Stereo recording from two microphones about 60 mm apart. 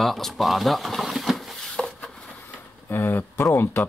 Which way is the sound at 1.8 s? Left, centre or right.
Centre.